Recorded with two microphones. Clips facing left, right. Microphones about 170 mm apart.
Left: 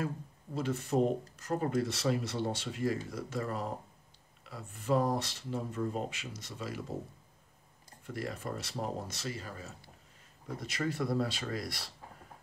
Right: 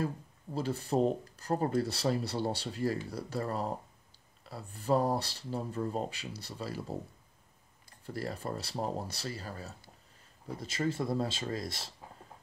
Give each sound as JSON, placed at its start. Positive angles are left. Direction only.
{"t": 0.6, "sound": "speech", "side_deg": -35}
{"t": 8.0, "sound": "speech", "side_deg": -35}